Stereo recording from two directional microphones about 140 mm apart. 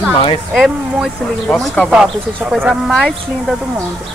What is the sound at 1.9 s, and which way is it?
Speech, 5° right (ahead or behind).